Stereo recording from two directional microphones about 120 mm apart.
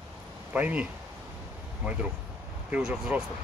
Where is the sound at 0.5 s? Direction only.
10° right (ahead or behind).